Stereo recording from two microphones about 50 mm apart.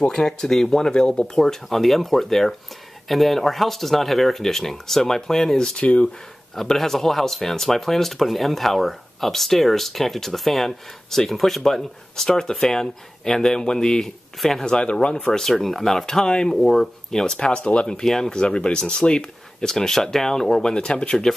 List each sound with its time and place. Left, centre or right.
0.1 s speech: centre
1.3 s speech: centre
5.8 s speech: left
6.5 s speech: centre
14.7 s speech: centre
15.2 s speech: centre
16.3 s speech: centre
20.7 s speech: centre